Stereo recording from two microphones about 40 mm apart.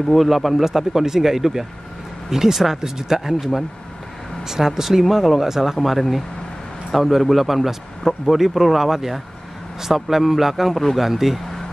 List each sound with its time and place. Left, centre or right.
0.1 s speech: centre
4.5 s speech: centre
5.0 s a man's voice: centre